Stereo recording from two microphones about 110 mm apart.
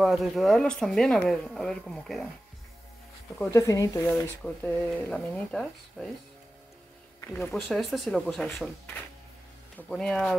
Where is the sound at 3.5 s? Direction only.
30° left (ahead or behind).